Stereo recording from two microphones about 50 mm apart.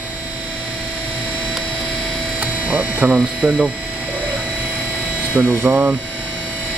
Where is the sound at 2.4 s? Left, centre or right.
Right.